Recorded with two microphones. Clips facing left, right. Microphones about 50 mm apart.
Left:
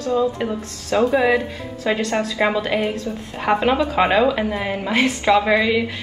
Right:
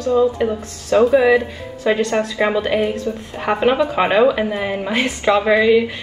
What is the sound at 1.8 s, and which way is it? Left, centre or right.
A woman's voice, right.